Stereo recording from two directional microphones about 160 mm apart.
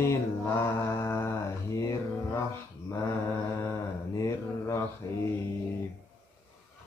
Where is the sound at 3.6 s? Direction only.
20° left (ahead or behind).